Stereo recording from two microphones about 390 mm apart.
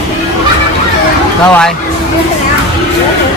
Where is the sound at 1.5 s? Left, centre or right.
Centre.